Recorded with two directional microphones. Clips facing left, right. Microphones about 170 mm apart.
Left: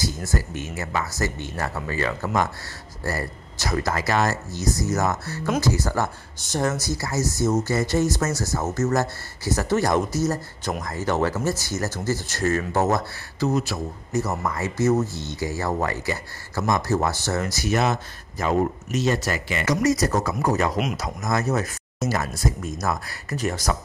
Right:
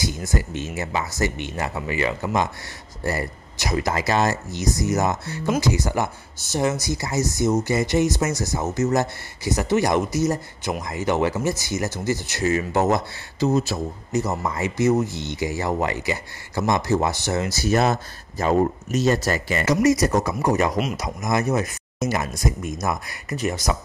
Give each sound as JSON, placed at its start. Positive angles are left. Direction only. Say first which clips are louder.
{"t": 0.3, "sound": "speech", "louder": "right 2 dB", "side_deg": -25}
{"t": 17.5, "sound": "speech", "louder": "right 3 dB", "side_deg": -30}
{"t": 19.6, "sound": "speech", "louder": "right 3 dB", "side_deg": -20}
{"t": 20.7, "sound": "speech", "louder": "right 1 dB", "side_deg": 5}
{"t": 21.0, "sound": "speech", "louder": "right 2 dB", "side_deg": -15}